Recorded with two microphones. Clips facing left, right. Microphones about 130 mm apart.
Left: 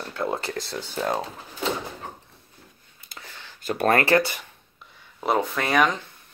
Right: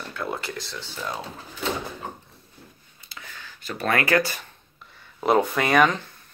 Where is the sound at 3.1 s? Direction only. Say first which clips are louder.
Even; 50° left (ahead or behind).